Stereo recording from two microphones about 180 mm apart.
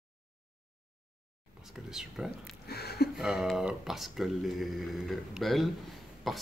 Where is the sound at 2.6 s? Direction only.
60° left (ahead or behind).